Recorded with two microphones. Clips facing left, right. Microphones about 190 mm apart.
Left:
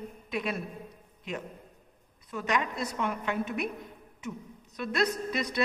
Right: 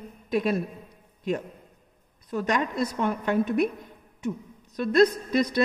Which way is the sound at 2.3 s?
40° right (ahead or behind).